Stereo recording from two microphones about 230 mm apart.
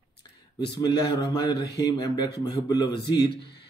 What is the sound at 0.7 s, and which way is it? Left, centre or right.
Speech, centre.